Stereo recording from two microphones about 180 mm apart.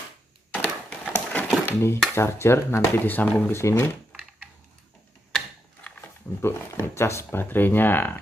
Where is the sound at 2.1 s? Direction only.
15° left (ahead or behind).